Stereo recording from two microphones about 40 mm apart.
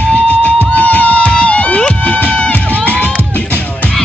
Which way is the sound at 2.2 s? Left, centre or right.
Left.